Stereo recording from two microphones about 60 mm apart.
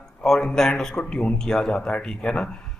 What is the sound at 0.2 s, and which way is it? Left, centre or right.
Speech, centre.